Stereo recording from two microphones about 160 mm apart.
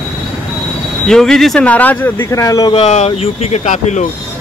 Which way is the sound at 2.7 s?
45° left (ahead or behind).